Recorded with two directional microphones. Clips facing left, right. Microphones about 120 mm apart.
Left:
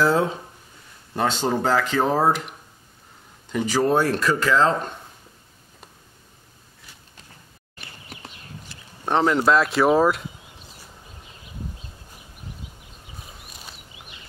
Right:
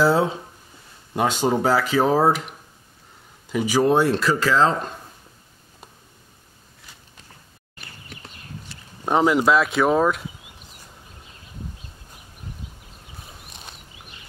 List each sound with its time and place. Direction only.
1.1 s speech: 10° right (ahead or behind); by 4.9 s 35° right (ahead or behind)
9.0 s speech: 10° right (ahead or behind)